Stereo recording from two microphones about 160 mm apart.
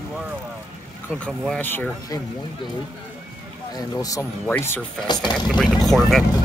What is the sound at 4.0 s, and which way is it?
Speech, 20° left (ahead or behind).